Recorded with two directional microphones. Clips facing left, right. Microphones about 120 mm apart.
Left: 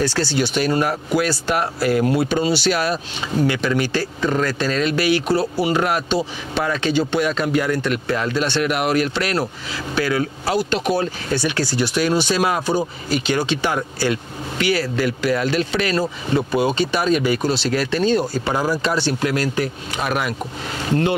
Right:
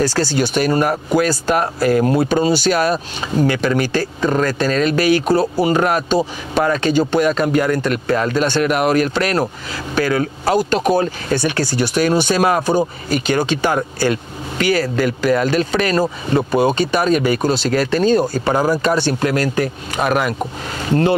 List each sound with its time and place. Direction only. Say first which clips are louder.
0.0 s speech: right 3 dB; 45° right (ahead or behind)